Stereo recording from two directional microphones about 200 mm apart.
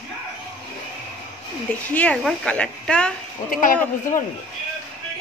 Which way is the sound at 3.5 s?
40° left (ahead or behind).